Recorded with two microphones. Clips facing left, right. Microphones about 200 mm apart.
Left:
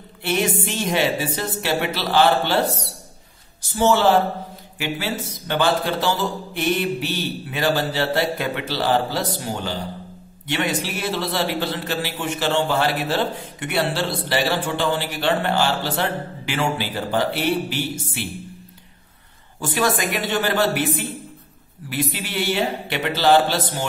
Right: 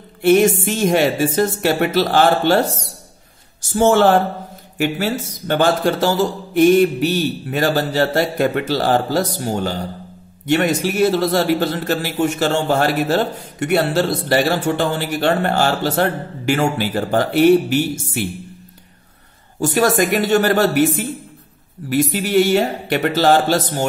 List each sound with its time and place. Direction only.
0.2 s a man's voice: 45° right (ahead or behind)
19.6 s a man's voice: 45° right (ahead or behind)